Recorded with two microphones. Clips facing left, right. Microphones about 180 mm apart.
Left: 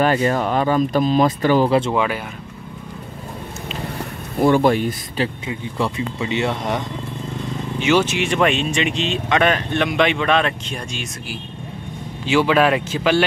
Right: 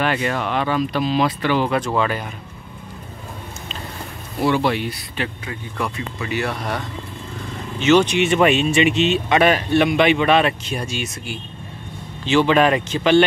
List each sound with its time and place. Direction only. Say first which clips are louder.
0.0 s speech: left 4 dB; 35° left (ahead or behind)
1.9 s speech: left 1 dB; 10° left (ahead or behind)
4.4 s speech: left 4 dB; 50° left (ahead or behind)
5.8 s speech: left 3 dB; 25° left (ahead or behind)
7.8 s speech: right 3 dB; 5° left (ahead or behind)
12.3 s speech: even; 5° left (ahead or behind)